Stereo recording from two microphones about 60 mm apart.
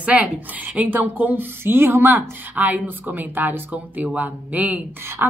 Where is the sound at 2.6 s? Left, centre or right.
Right.